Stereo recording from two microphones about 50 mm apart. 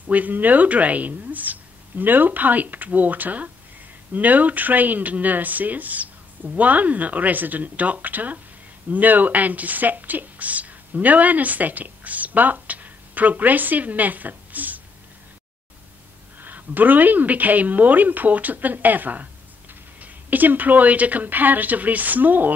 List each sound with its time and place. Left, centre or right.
0.0 s speech: right
16.3 s speech: right